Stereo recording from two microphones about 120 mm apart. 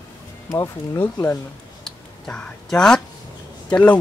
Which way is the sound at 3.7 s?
10° left (ahead or behind).